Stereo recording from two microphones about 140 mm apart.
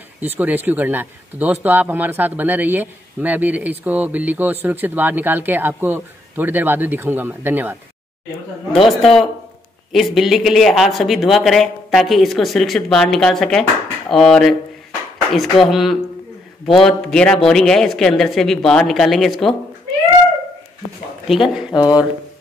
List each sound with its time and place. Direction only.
0.2 s speech: 15° right (ahead or behind)
8.8 s speech: centre (ahead or behind)
15.6 s speech: centre (ahead or behind)
21.3 s speech: 5° right (ahead or behind)
21.7 s speech: 30° left (ahead or behind)